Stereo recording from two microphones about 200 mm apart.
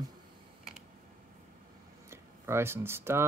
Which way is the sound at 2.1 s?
15° right (ahead or behind).